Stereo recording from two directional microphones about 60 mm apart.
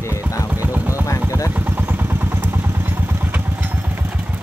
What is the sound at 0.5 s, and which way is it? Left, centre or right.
Vehicle, right.